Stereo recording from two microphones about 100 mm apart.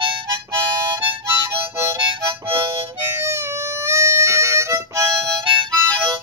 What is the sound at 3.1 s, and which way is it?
Harmonica, 25° right (ahead or behind).